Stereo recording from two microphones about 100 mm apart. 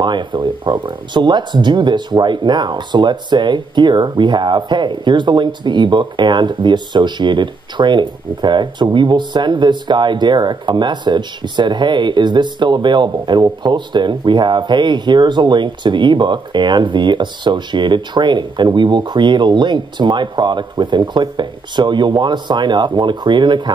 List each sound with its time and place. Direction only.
0.0 s speech: 50° right (ahead or behind)